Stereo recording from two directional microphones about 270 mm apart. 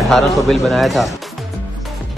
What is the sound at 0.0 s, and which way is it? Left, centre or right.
Speech, centre.